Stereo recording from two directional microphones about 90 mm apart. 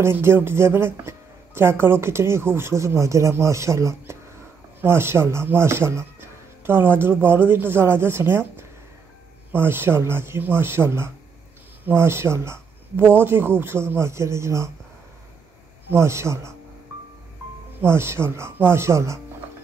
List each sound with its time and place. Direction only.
0.0 s speech: 25° right (ahead or behind)
15.9 s speech: 30° right (ahead or behind)
17.8 s speech: 30° right (ahead or behind)